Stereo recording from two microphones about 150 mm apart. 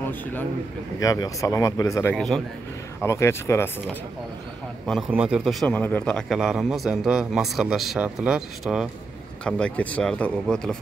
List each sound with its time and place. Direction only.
0.0 s a sound: 15° left (ahead or behind)
0.9 s speech: 25° left (ahead or behind)
2.1 s a man's voice: centre (ahead or behind)
3.0 s speech: 15° left (ahead or behind)
5.1 s a man's voice: 5° right (ahead or behind)
5.8 s a man's voice: 10° left (ahead or behind); by 8.8 s 5° right (ahead or behind)
9.4 s speech: 5° left (ahead or behind)